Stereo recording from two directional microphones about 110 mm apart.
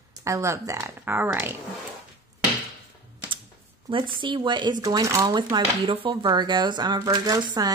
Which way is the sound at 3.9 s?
50° right (ahead or behind).